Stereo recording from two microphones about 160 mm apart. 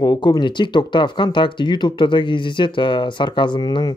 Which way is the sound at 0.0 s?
25° left (ahead or behind).